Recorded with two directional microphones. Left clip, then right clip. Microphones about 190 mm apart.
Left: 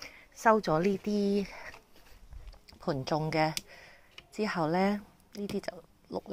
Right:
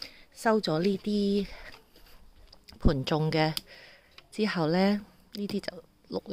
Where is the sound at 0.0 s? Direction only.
30° right (ahead or behind).